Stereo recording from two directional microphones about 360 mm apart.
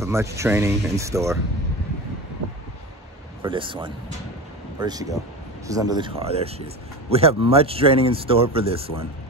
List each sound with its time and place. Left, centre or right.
0.0 s speech: centre
3.4 s speech: centre